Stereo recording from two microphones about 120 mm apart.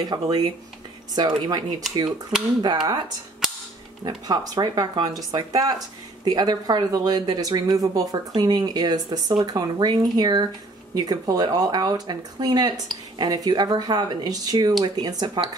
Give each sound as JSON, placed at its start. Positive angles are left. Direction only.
{"t": 0.0, "sound": "speech", "side_deg": -35}
{"t": 2.6, "sound": "speech", "side_deg": -35}
{"t": 4.0, "sound": "speech", "side_deg": -35}